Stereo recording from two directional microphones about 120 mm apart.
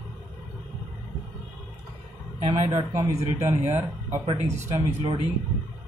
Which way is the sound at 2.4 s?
70° right (ahead or behind).